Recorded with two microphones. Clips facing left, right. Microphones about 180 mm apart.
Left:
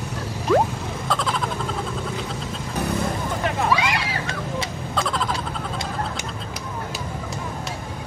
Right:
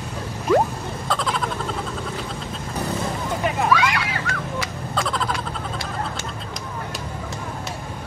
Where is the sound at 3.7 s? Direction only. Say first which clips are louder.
Right 4 dB; 25° left (ahead or behind).